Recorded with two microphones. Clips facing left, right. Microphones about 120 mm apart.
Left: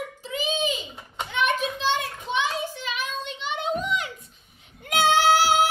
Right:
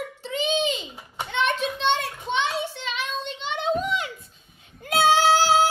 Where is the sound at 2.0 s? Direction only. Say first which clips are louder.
Right 1 dB; centre (ahead or behind).